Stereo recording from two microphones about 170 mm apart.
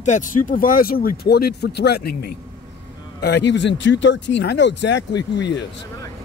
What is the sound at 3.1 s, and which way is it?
Speech, 75° left (ahead or behind).